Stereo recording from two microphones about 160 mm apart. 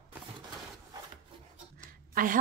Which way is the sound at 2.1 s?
60° right (ahead or behind).